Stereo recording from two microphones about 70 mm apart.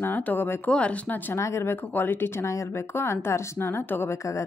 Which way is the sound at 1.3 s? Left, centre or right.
Left.